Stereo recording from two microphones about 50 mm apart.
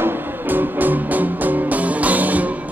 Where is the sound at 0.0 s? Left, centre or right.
Right.